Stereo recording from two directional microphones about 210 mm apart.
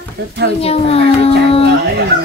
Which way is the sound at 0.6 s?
30° left (ahead or behind).